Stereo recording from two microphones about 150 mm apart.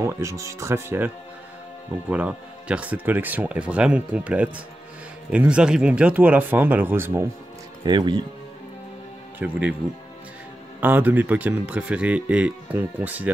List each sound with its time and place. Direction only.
0.0 s speech: 20° right (ahead or behind)
7.8 s speech: 30° right (ahead or behind)
9.4 s speech: 5° right (ahead or behind)
10.8 s speech: 10° right (ahead or behind)